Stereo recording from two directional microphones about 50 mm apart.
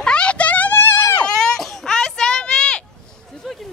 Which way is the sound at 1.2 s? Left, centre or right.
Centre.